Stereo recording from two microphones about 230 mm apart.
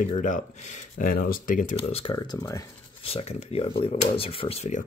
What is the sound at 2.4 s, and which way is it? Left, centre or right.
Speech, centre.